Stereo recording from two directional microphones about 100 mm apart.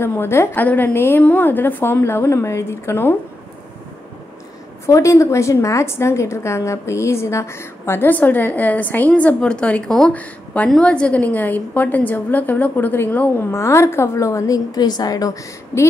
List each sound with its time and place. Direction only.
0.0 s a woman's voice: 25° left (ahead or behind)
4.8 s a woman's voice: 30° left (ahead or behind)